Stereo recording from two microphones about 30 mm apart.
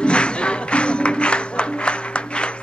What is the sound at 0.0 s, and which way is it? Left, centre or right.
Music, left.